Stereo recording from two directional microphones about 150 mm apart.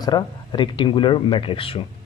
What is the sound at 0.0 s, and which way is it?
A man's voice, 30° left (ahead or behind).